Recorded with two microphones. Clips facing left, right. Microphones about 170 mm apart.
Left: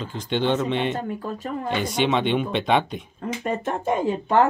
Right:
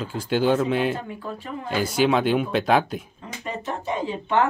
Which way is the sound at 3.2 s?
50° left (ahead or behind).